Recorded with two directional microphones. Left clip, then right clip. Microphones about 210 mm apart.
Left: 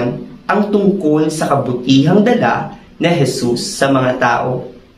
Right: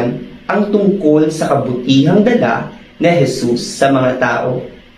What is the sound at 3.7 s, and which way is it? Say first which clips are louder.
Speech: right 2 dB; 15° left (ahead or behind).